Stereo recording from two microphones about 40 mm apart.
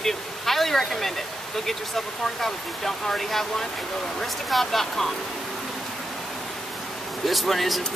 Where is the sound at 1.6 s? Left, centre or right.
Centre.